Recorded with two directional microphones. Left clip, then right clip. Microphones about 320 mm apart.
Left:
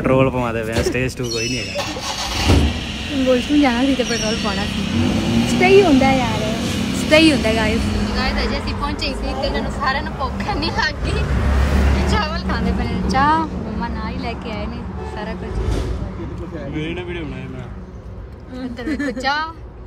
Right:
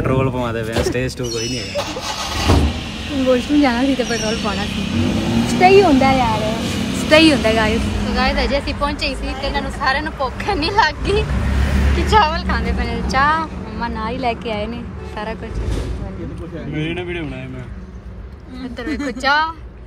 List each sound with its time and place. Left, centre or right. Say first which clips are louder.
0.0 s speech: left 3 dB; centre
16.7 s speech: right 3 dB; right
19.2 s speech: right 6 dB; centre